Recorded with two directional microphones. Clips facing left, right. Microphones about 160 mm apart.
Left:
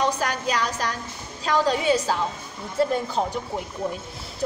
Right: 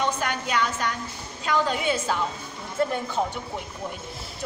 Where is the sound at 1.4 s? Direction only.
35° left (ahead or behind).